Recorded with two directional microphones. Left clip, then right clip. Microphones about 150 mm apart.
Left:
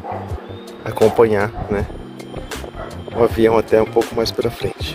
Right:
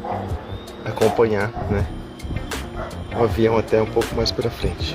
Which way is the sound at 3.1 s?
65° left (ahead or behind).